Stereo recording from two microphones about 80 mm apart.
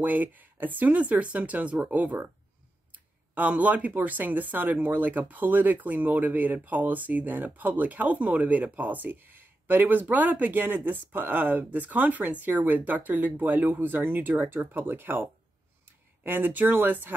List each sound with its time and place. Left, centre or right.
0.0 s speech: right
16.3 s speech: right